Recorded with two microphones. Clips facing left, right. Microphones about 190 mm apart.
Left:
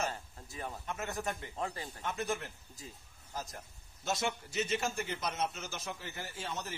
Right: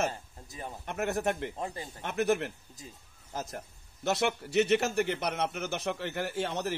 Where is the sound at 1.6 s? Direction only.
20° right (ahead or behind).